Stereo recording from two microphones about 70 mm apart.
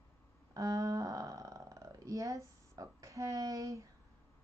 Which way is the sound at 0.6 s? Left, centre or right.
Right.